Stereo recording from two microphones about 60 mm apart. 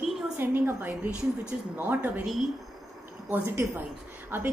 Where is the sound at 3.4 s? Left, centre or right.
Right.